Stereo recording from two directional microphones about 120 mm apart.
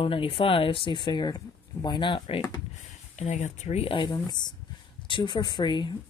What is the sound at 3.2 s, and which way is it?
Speech, 80° left.